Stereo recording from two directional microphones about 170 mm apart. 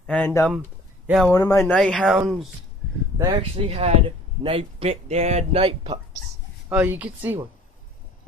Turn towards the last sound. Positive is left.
turn(degrees=-10)  # may be behind; listen again after turning